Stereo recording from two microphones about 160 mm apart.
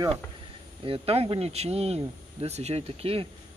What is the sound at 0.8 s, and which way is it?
A man's voice, 35° right (ahead or behind).